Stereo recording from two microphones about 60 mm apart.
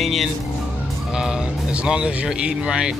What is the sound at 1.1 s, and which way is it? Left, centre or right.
Speech, centre.